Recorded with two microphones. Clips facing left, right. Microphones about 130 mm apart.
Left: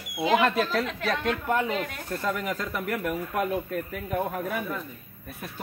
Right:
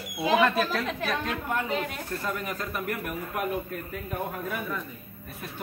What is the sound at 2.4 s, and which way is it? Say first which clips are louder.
Speech: left 2 dB; 90° left.